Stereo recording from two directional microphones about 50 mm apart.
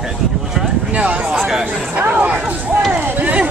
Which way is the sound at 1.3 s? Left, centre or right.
Centre.